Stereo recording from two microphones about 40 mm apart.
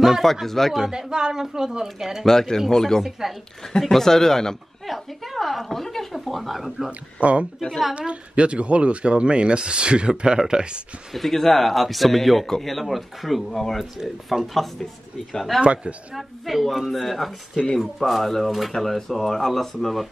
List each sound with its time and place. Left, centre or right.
0.2 s speech: centre
0.8 s speech: centre
2.2 s speech: centre
3.0 s speech: centre
3.8 s speech: centre
4.8 s speech: centre
6.9 s speech: right
11.1 s speech: centre
13.7 s speech: centre
15.6 s speech: right
16.2 s speech: centre